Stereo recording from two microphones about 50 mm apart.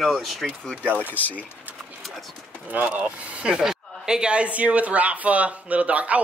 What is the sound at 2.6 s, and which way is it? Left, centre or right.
Speech, right.